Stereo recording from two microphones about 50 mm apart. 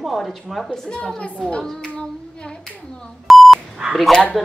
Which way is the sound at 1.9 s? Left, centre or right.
Centre.